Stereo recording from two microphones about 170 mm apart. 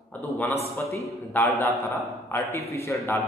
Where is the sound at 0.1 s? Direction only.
10° left (ahead or behind).